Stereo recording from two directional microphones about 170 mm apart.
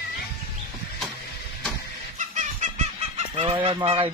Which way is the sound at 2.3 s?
45° right (ahead or behind).